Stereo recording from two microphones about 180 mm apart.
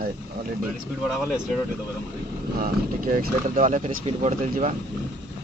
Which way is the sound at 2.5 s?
50° right (ahead or behind).